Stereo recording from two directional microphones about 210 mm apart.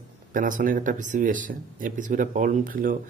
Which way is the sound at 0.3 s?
40° right (ahead or behind).